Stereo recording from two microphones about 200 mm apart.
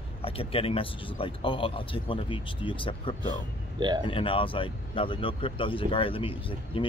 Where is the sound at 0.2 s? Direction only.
30° left (ahead or behind).